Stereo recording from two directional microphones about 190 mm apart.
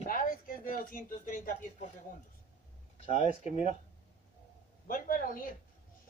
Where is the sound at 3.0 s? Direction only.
40° left (ahead or behind).